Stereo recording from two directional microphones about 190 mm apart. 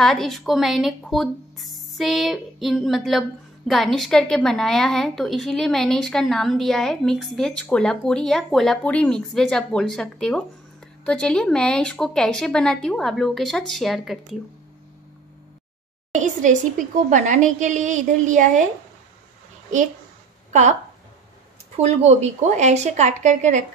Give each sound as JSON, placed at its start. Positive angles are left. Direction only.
{"t": 0.0, "sound": "speech", "side_deg": 0}
{"t": 16.1, "sound": "speech", "side_deg": -40}
{"t": 21.7, "sound": "speech", "side_deg": -35}